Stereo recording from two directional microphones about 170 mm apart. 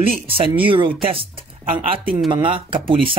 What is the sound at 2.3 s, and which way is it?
Speech, 30° right (ahead or behind).